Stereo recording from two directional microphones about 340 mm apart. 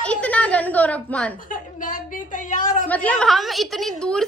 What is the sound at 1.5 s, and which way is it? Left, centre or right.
A woman's voice, left.